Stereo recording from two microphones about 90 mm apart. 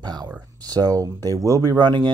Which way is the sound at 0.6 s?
45° right (ahead or behind).